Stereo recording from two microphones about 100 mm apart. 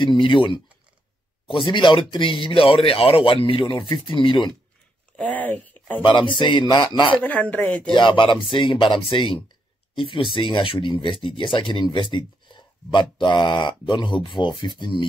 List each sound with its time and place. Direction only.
0.2 s speech: 55° left (ahead or behind)
1.5 s speech: 55° left (ahead or behind)
2.4 s speech: 65° left (ahead or behind)
5.1 s speech: 15° left (ahead or behind)
6.3 s speech: 55° left (ahead or behind)
7.2 s speech: 15° left (ahead or behind)
7.9 s speech: 55° left (ahead or behind)